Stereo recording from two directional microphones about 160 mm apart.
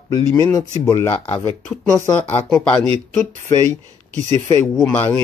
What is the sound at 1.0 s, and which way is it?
Speech, 30° left (ahead or behind).